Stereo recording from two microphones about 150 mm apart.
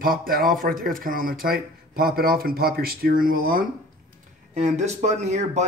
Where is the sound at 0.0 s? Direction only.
75° right (ahead or behind).